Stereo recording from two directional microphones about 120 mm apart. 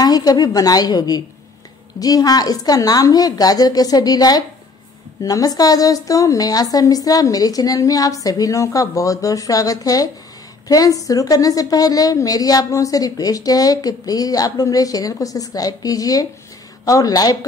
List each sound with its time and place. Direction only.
0.0 s a woman's voice: 30° left (ahead or behind)